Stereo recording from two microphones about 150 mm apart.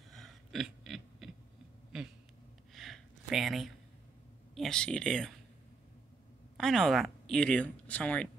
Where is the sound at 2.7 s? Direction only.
Centre (ahead or behind).